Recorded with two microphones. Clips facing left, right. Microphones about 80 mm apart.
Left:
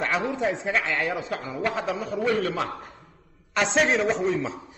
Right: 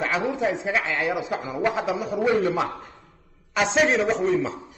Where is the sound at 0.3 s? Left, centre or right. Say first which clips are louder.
Right 1 dB; centre.